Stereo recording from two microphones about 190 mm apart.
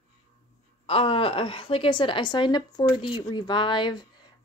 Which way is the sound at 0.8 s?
30° left (ahead or behind).